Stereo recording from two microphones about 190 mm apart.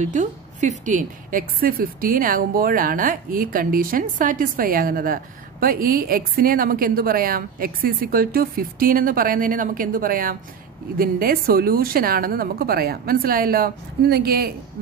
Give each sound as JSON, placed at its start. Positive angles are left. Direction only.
{"t": 0.0, "sound": "a woman's voice", "side_deg": -40}